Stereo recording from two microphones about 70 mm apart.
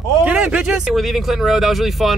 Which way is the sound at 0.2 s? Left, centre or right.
Right.